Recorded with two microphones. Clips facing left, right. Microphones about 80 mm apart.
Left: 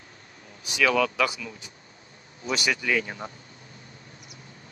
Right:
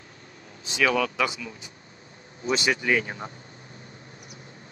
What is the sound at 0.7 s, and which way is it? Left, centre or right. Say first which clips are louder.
Speech: left 1 dB; centre.